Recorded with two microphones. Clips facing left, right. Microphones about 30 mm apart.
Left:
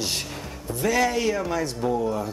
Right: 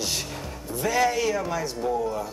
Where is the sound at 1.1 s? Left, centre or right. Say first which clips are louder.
Left 1 dB; centre.